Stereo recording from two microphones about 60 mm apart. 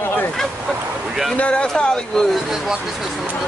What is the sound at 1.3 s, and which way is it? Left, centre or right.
Speech, centre.